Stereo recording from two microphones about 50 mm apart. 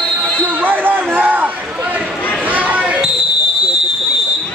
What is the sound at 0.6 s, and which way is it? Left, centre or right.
Basketball bounce, right.